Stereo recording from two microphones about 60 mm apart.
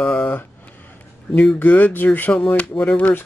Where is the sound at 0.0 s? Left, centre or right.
Left.